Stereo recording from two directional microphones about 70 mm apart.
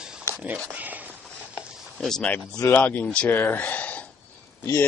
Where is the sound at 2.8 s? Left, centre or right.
Left.